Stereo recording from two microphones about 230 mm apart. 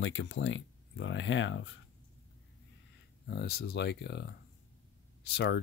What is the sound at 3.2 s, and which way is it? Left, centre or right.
Speech, left.